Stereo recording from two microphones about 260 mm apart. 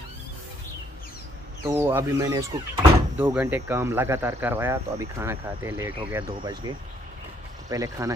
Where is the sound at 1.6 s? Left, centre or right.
Centre.